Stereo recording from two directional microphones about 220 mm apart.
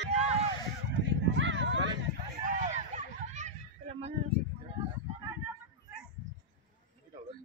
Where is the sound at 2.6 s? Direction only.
35° right (ahead or behind).